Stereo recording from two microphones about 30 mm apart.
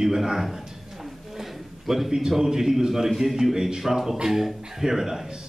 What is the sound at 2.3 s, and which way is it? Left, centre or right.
A man's voice, centre.